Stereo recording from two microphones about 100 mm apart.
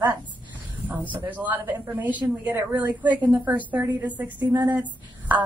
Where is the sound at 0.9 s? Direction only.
15° right (ahead or behind).